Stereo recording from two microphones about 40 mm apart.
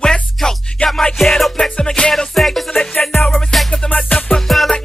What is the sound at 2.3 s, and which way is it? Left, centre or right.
Music, centre.